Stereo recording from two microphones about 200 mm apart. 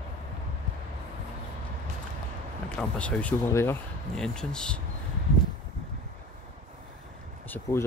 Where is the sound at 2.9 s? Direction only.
5° left (ahead or behind).